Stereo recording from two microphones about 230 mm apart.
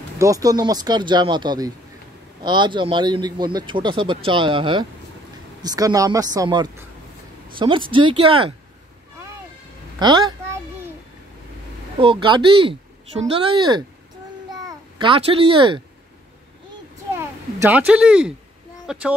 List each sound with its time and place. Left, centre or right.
0.2 s speech: centre
7.4 s a sound: right
7.9 s speech: right
9.9 s a child's voice: centre
12.0 s speech: right
17.1 s a child's voice: centre